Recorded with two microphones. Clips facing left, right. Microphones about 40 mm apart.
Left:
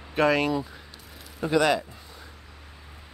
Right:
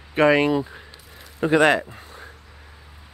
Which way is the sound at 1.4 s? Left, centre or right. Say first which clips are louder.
Right 5 dB; right.